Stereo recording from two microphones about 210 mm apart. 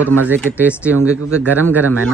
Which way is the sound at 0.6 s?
10° left (ahead or behind).